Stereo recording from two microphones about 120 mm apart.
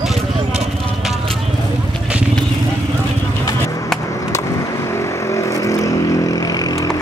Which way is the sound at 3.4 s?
25° left (ahead or behind).